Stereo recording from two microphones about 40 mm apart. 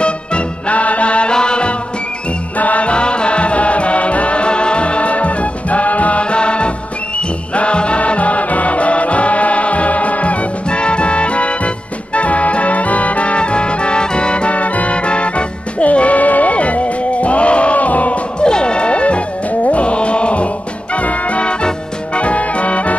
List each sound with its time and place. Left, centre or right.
0.0 s music: left
2.6 s music: left
2.9 s music: left
18.4 s music: left